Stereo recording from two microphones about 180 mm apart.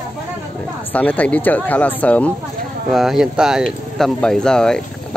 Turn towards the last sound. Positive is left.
turn(degrees=5)  # may be behind; listen again after turning